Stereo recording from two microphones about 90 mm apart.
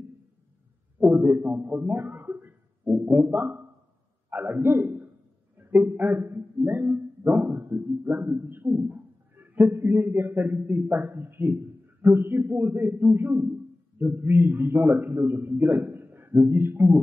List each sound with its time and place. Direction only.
1.1 s a man's voice: 25° right (ahead or behind)